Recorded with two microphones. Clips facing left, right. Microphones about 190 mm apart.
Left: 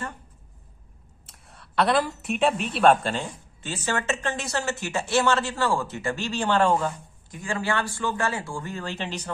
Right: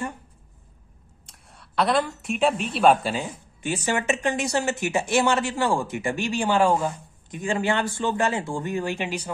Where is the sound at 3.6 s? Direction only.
15° right (ahead or behind).